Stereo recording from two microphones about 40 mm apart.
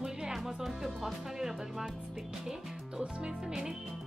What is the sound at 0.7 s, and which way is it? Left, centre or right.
Speech, centre.